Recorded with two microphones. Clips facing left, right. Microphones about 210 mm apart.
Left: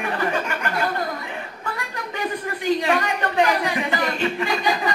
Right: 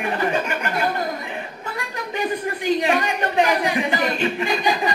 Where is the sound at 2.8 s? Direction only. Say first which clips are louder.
Right 1 dB; 25° right (ahead or behind).